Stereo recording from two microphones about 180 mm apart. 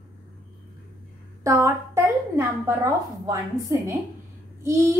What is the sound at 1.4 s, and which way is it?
A woman's voice, 15° right (ahead or behind).